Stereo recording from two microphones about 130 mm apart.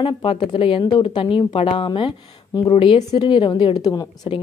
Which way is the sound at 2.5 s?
30° left (ahead or behind).